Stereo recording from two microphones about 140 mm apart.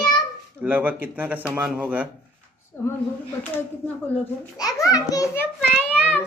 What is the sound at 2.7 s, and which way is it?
Speech, 15° left (ahead or behind).